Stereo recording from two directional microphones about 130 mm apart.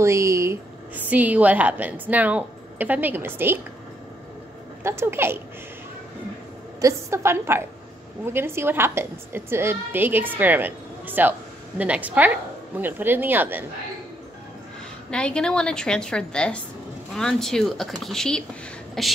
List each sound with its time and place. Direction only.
0.0 s a woman's voice: 20° right (ahead or behind)
4.8 s a woman's voice: 20° right (ahead or behind)
6.8 s a woman's voice: 20° right (ahead or behind)
15.0 s a woman's voice: 5° left (ahead or behind)